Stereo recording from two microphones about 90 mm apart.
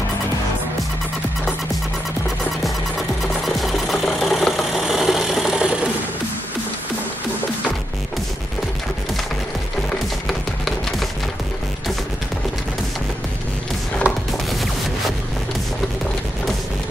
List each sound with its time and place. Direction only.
3.4 s engine: centre (ahead or behind)
10.2 s music: centre (ahead or behind)
14.0 s music: 15° right (ahead or behind)